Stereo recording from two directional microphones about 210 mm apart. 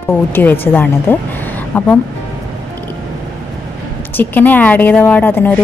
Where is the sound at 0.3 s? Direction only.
10° left (ahead or behind).